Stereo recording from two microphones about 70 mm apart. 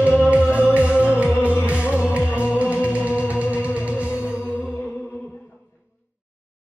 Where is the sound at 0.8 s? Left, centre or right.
Centre.